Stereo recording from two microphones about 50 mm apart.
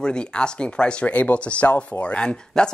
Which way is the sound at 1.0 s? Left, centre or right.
Left.